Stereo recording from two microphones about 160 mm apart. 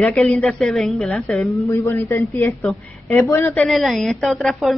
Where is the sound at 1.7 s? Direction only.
15° left (ahead or behind).